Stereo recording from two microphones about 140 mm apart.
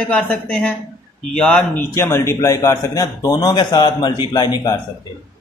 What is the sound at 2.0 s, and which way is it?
A man's voice, 20° left (ahead or behind).